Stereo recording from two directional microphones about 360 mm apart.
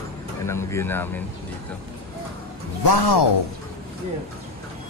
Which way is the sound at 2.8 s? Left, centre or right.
Left.